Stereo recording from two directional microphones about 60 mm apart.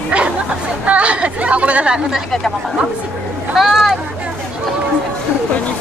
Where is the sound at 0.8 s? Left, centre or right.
Right.